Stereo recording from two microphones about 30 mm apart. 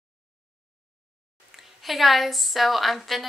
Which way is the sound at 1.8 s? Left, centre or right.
Centre.